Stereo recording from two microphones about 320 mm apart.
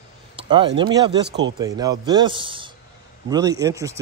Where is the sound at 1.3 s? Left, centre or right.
Right.